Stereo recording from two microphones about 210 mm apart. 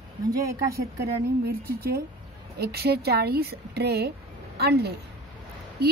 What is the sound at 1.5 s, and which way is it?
Speech, 45° right (ahead or behind).